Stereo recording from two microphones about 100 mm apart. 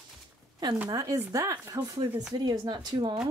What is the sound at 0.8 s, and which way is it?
Speech, 40° right (ahead or behind).